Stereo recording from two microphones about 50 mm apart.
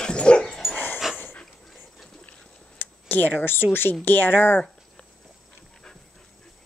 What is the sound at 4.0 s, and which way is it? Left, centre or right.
Speech, left.